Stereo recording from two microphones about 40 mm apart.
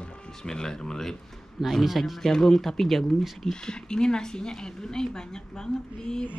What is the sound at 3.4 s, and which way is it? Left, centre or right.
Speech, centre.